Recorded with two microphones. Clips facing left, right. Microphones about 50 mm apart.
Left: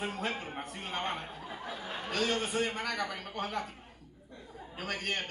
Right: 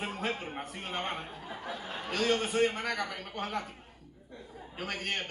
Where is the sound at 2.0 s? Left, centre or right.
Right.